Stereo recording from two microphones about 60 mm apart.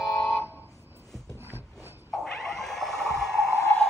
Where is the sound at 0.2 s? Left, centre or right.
Left.